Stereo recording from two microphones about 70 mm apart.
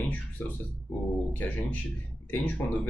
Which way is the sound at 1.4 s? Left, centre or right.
Left.